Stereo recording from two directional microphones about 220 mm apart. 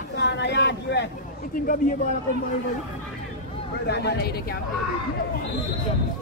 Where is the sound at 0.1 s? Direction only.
50° left (ahead or behind).